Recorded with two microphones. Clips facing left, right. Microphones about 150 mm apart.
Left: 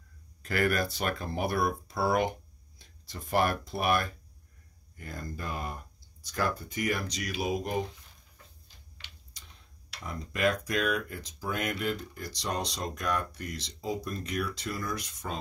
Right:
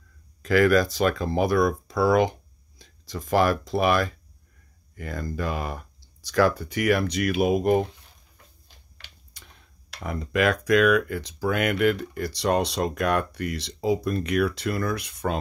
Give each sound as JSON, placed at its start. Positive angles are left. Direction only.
{"t": 0.4, "sound": "speech", "side_deg": -90}
{"t": 8.9, "sound": "typing", "side_deg": -55}
{"t": 10.0, "sound": "speech", "side_deg": -70}